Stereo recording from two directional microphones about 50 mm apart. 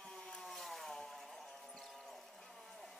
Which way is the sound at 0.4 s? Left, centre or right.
Centre.